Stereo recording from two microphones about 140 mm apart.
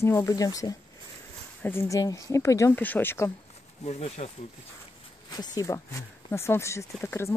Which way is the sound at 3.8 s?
50° left (ahead or behind).